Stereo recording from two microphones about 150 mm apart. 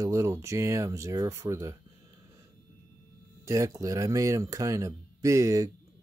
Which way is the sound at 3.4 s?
20° right (ahead or behind).